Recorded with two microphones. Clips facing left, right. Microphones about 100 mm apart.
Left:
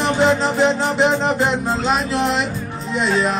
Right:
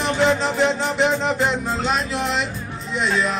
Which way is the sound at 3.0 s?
35° left (ahead or behind).